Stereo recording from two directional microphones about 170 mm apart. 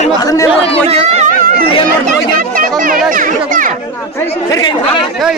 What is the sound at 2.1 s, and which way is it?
Chatter, 55° right (ahead or behind).